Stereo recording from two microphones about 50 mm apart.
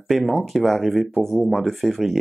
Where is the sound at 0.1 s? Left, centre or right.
Centre.